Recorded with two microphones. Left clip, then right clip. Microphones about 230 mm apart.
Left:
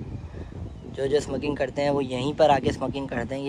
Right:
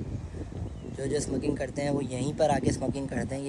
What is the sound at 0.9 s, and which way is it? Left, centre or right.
Speech, centre.